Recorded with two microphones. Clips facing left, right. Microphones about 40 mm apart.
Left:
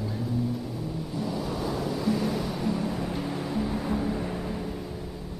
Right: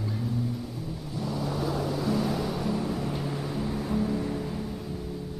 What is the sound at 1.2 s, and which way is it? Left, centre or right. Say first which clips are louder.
Music: right 1 dB; centre.